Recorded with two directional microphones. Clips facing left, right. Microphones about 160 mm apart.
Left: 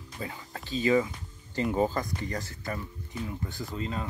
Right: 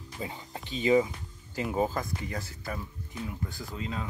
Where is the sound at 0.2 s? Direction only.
20° right (ahead or behind).